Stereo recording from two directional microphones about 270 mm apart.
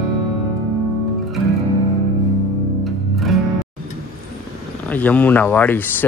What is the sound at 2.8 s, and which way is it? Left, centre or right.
Music, centre.